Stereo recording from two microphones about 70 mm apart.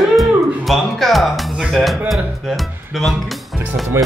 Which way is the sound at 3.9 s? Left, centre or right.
Right.